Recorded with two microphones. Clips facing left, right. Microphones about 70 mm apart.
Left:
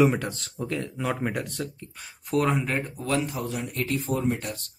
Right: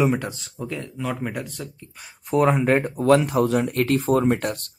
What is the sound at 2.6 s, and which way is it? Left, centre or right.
Speech, right.